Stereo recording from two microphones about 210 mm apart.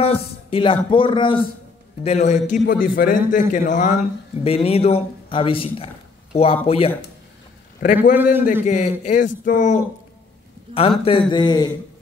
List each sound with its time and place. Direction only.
0.0 s a sound: 25° left (ahead or behind)
0.8 s a man's voice: 25° left (ahead or behind)
7.8 s a man's voice: 40° left (ahead or behind)
8.1 s a man's voice: 10° right (ahead or behind)
8.6 s a man's voice: 35° left (ahead or behind)
10.7 s a man's voice: 25° left (ahead or behind)